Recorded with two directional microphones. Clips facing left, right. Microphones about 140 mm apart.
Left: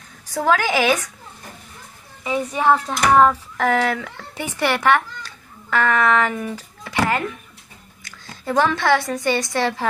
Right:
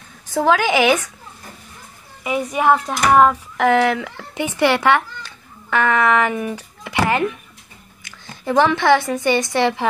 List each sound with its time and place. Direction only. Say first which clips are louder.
0.3 s a woman's voice: right 3 dB; 25° right (ahead or behind)
2.2 s a woman's voice: right 1 dB; 15° right (ahead or behind)